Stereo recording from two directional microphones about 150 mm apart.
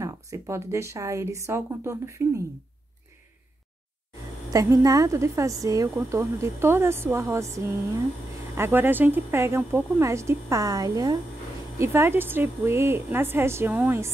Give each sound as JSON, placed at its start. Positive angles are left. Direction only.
{"t": 0.0, "sound": "speech", "side_deg": -20}
{"t": 4.5, "sound": "speech", "side_deg": -25}
{"t": 8.5, "sound": "speech", "side_deg": -15}